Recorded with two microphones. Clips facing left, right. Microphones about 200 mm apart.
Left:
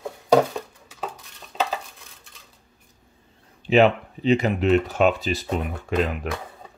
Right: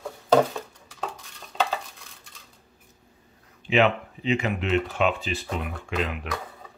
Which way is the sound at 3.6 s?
35° left (ahead or behind).